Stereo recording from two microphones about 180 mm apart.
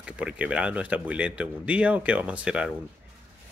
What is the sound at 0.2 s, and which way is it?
Speech, 5° right (ahead or behind).